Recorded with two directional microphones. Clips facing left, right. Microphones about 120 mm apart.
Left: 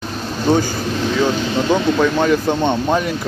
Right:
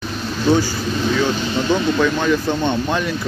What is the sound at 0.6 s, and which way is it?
Speech, 50° left (ahead or behind).